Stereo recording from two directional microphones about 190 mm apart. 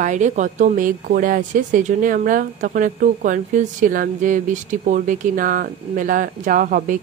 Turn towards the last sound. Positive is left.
turn(degrees=-45)  # may be behind; listen again after turning